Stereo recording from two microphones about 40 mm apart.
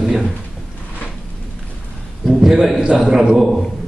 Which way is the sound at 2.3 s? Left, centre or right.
Centre.